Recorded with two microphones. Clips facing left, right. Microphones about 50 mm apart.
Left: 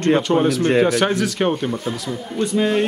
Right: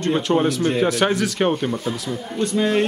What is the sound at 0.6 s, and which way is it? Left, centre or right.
Speech, left.